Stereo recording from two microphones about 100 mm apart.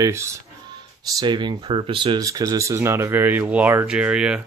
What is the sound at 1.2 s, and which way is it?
Speech, 50° right (ahead or behind).